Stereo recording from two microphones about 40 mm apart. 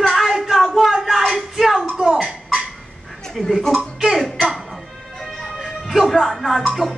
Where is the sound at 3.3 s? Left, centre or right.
Centre.